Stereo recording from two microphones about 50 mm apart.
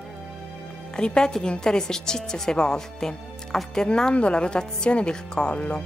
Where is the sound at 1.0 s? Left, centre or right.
Centre.